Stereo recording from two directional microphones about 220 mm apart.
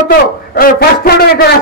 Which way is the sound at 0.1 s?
40° left (ahead or behind).